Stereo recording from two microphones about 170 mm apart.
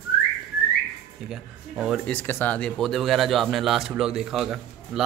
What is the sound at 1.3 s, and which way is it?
Speech, 5° right (ahead or behind).